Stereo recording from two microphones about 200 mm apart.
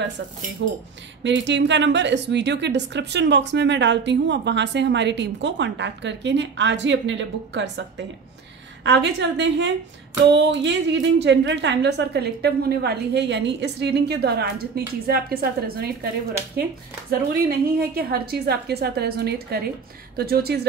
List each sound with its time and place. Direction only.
1.2 s a woman's voice: 65° right (ahead or behind)
8.8 s a woman's voice: 60° right (ahead or behind)
17.1 s a woman's voice: 50° right (ahead or behind)